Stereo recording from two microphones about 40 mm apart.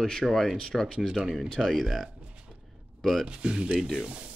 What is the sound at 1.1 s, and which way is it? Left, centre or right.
Speech, centre.